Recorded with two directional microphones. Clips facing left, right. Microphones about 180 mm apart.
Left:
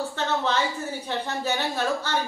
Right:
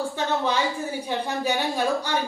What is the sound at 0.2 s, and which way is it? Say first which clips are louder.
Speech: right 1 dB; 15° right (ahead or behind).